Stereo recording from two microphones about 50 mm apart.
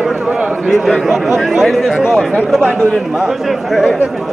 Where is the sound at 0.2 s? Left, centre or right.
Centre.